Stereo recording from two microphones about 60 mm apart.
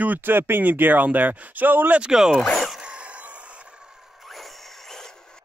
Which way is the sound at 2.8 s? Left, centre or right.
Centre.